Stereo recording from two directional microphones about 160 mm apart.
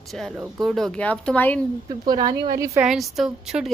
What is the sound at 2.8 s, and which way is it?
Speech, centre (ahead or behind).